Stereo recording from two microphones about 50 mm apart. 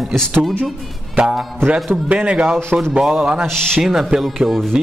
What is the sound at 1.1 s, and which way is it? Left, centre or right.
A man's voice, centre.